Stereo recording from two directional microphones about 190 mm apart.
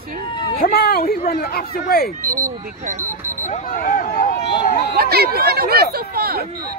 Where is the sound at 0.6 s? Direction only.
50° left (ahead or behind).